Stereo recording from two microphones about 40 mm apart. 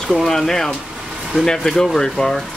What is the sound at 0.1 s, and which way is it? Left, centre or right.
Speech, centre.